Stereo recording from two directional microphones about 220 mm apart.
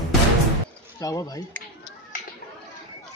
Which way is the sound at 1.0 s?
15° left (ahead or behind).